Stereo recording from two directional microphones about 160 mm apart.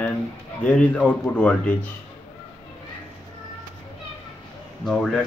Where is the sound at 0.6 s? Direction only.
10° left (ahead or behind).